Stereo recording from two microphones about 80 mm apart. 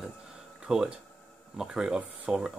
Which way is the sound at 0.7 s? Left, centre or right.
Centre.